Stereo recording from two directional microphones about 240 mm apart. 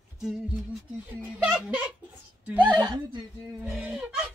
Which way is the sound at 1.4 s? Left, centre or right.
Centre.